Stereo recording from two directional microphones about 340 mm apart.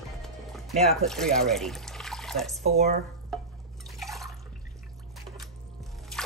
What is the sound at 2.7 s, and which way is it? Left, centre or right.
Speech, centre.